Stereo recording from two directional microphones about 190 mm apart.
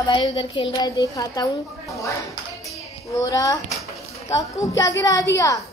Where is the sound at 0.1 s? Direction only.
25° left (ahead or behind).